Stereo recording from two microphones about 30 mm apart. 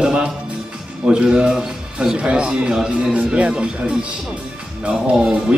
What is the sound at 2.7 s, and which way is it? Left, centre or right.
Speech, centre.